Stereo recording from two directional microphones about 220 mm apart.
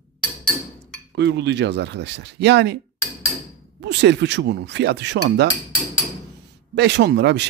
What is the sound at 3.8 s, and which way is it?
Speech, 50° right (ahead or behind).